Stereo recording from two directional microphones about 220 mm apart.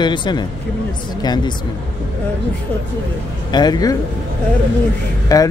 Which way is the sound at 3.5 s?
20° left (ahead or behind).